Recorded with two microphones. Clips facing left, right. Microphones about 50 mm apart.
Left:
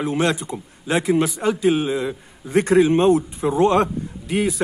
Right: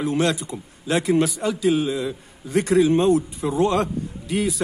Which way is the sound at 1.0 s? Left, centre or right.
Centre.